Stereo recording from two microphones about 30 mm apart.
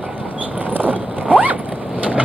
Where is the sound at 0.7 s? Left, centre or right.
Right.